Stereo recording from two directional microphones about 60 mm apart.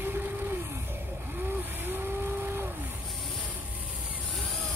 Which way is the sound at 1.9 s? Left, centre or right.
Right.